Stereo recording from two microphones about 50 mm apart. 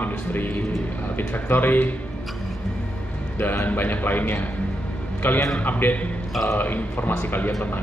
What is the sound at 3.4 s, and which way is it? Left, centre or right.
Speech, left.